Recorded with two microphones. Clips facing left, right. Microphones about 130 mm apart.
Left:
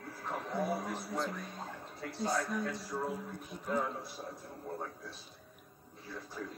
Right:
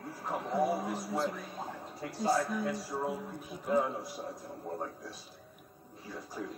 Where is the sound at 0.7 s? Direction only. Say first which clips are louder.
Right 3 dB; centre (ahead or behind).